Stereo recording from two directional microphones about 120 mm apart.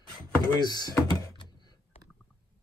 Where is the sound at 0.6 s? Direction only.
35° left (ahead or behind).